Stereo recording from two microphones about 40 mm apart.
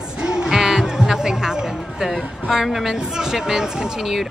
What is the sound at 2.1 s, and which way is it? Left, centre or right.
A woman's voice, centre.